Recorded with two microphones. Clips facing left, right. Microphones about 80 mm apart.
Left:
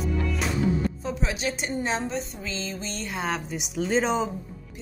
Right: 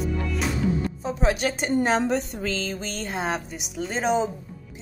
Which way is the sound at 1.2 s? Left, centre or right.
Right.